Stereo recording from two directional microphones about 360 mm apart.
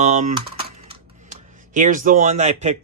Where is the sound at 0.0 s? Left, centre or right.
Centre.